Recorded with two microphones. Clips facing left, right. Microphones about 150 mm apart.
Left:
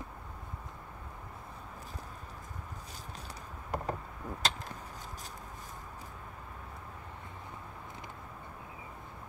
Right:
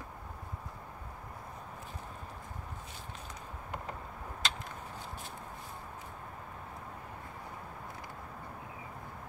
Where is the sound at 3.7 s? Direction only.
40° left (ahead or behind).